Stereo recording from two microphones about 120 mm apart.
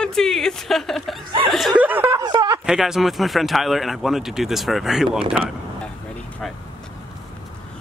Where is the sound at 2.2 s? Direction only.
35° right (ahead or behind).